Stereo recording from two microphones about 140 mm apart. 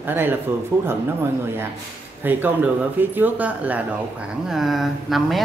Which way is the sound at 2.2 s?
15° right (ahead or behind).